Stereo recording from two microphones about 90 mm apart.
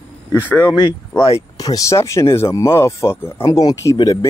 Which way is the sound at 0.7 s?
50° left (ahead or behind).